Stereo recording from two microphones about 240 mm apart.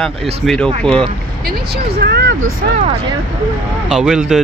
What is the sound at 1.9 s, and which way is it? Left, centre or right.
Speech, right.